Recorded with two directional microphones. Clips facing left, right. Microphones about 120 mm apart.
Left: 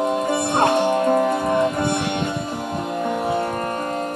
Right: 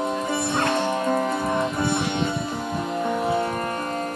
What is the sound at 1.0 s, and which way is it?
Music, 45° left (ahead or behind).